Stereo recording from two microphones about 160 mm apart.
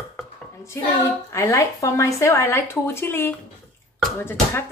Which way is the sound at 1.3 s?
20° left (ahead or behind).